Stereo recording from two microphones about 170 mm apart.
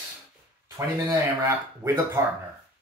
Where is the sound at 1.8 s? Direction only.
15° right (ahead or behind).